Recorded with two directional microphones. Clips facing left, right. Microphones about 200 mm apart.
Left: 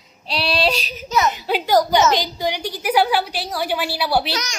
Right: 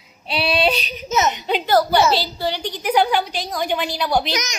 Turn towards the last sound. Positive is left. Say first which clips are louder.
# right 1 dB
turn(degrees=-20)  # may be behind; listen again after turning